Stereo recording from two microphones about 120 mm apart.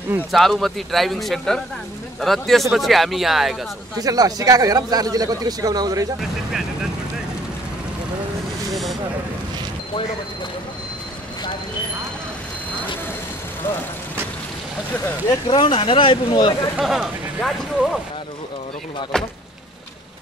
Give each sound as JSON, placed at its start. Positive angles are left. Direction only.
{"t": 0.3, "sound": "speech", "side_deg": 0}
{"t": 4.0, "sound": "a man's voice", "side_deg": -30}
{"t": 15.4, "sound": "speech", "side_deg": 40}
{"t": 16.7, "sound": "speech", "side_deg": -5}
{"t": 19.1, "sound": "speech", "side_deg": 5}